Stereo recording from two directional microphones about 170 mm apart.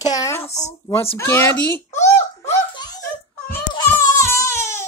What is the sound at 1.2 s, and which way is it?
Speech, 10° left (ahead or behind).